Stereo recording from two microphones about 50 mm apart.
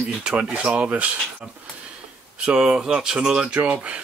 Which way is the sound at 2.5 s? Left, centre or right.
Centre.